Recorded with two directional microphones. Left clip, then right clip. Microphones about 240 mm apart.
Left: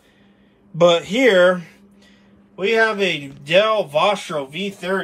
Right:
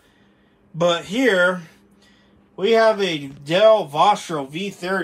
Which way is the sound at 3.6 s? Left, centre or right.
Centre.